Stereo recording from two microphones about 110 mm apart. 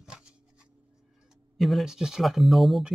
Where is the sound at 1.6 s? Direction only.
Centre (ahead or behind).